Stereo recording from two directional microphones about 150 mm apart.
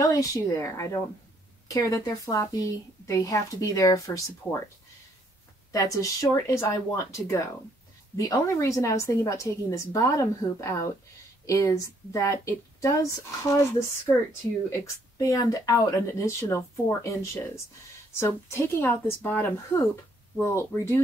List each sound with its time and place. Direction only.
0.1 s a woman's voice: 20° left (ahead or behind)
5.7 s a woman's voice: 20° left (ahead or behind)